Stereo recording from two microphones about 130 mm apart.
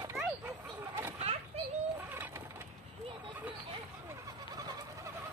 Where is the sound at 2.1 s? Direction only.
15° right (ahead or behind).